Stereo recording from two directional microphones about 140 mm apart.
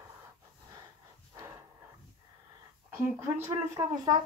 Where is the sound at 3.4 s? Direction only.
25° right (ahead or behind).